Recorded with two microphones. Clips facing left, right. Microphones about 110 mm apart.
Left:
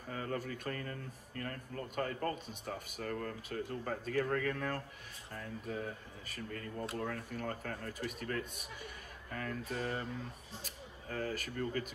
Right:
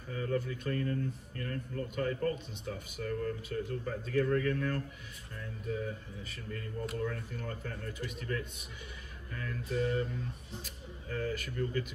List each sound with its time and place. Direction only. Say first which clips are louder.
0.1 s a man's voice: right 5 dB; 45° left (ahead or behind)
6.2 s a man's voice: even; 40° left (ahead or behind)